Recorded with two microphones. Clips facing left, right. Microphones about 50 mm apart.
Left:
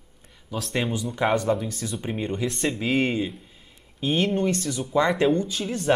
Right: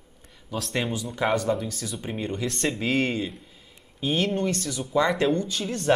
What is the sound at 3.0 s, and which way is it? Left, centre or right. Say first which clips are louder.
Speech: left 2 dB; centre.